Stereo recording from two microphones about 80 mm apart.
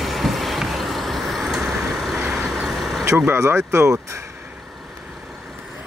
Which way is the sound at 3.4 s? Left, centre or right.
Right.